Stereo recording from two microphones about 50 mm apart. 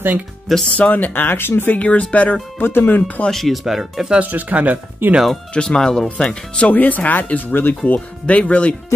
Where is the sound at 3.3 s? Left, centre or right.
Centre.